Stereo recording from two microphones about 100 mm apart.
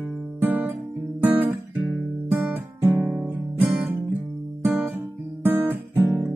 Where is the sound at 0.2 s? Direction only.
15° right (ahead or behind).